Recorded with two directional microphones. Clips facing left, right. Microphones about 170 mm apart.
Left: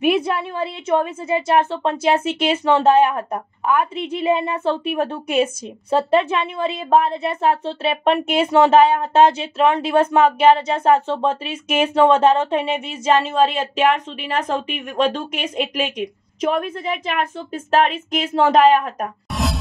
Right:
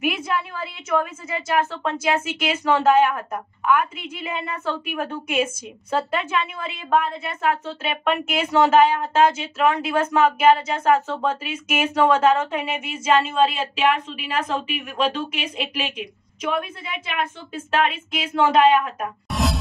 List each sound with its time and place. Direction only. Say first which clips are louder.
0.0 s a woman's voice: left 6 dB; 30° left (ahead or behind)
19.3 s music: right 1 dB; centre (ahead or behind)